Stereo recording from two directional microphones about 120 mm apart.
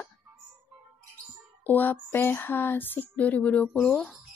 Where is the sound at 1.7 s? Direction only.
15° left (ahead or behind).